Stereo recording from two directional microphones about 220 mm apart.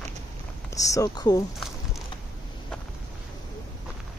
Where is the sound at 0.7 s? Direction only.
15° left (ahead or behind).